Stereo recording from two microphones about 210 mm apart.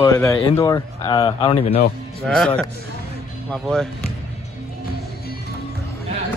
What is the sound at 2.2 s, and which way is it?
Music, centre (ahead or behind).